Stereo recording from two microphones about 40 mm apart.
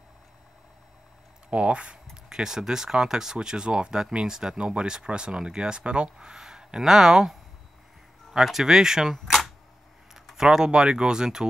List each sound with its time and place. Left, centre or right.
1.5 s speech: right
6.1 s speech: centre
8.5 s speech: centre
9.1 s speech: centre
10.3 s speech: centre